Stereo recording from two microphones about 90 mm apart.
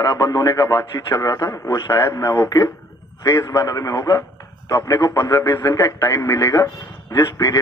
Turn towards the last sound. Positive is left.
turn(degrees=35)  # may be behind; listen again after turning